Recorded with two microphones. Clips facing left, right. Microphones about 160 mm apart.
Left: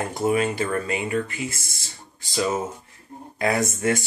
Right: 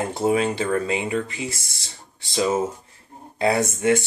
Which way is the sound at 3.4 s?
25° right (ahead or behind).